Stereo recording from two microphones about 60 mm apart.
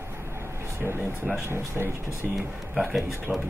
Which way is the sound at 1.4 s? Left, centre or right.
Right.